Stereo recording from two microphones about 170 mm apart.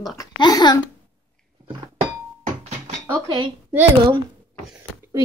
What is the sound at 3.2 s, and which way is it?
Speech, 25° right (ahead or behind).